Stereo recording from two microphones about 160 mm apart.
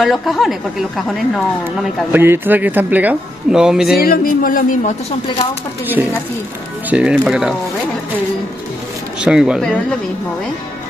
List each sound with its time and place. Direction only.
0.0 s a woman's voice: centre (ahead or behind)
2.1 s speech: 15° right (ahead or behind)
4.0 s speech: 65° left (ahead or behind)
6.9 s a woman's voice: 5° right (ahead or behind)
9.2 s a woman's voice: 5° right (ahead or behind)
9.6 s a woman's voice: 5° left (ahead or behind)